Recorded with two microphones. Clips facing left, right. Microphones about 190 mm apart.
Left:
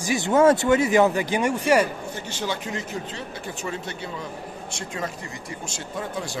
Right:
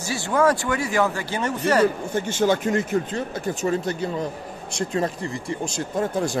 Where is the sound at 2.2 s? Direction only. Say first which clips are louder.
Right 10 dB; 50° right (ahead or behind).